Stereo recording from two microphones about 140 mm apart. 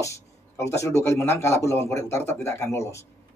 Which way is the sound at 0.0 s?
20° left (ahead or behind).